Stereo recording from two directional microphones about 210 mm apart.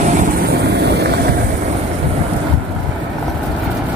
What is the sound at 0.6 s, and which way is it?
Vehicle, 55° right (ahead or behind).